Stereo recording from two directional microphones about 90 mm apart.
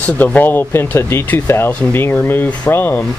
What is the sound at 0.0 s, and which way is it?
Speech, 20° left (ahead or behind).